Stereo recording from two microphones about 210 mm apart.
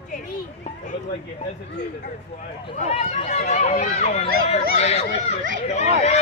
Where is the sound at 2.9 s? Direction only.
30° left (ahead or behind).